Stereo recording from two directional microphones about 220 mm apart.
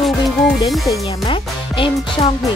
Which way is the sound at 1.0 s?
25° left (ahead or behind).